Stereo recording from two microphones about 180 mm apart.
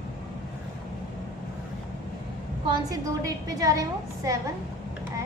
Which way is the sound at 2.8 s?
20° right (ahead or behind).